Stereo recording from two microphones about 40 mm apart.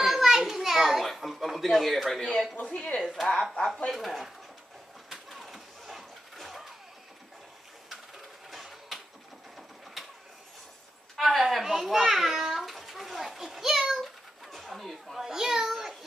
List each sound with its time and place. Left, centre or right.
0.0 s children playing: centre
1.7 s speech: centre
2.1 s speech: left
3.0 s speech: centre
3.6 s speech: centre
3.9 s speech: centre
5.1 s a sound: centre
8.5 s a sound: centre
11.1 s a child's voice: centre
14.0 s bird: centre
15.1 s a sound: centre